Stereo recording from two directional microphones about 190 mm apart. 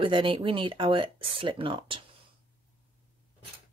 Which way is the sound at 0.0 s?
25° right (ahead or behind).